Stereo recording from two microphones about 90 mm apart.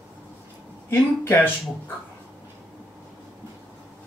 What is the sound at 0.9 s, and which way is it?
Speech, 25° left (ahead or behind).